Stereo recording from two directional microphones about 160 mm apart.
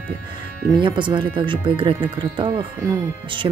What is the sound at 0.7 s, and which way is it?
Speech, 30° right (ahead or behind).